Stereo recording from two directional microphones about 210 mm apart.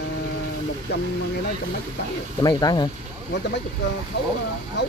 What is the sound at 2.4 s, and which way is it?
Speech, 20° left (ahead or behind).